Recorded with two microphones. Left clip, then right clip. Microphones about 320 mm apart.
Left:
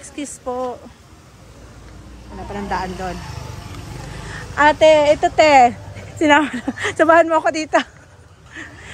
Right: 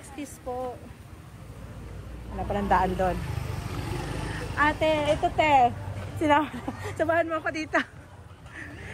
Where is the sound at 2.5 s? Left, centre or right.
Centre.